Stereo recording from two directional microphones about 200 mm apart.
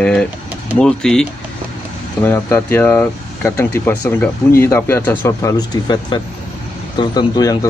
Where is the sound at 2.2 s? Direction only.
10° left (ahead or behind).